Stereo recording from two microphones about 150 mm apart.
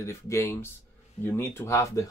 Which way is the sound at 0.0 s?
20° left (ahead or behind).